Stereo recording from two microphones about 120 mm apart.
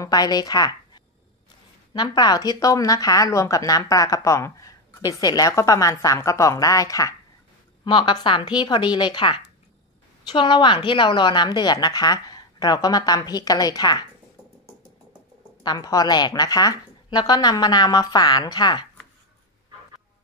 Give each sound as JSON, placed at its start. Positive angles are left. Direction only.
{"t": 0.0, "sound": "a woman's voice", "side_deg": 30}
{"t": 15.6, "sound": "a woman's voice", "side_deg": 35}